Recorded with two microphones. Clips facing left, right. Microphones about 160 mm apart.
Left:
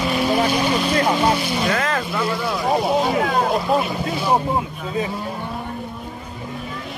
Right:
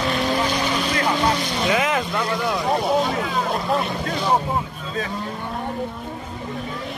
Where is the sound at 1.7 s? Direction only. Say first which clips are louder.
Right 5 dB; 15° right (ahead or behind).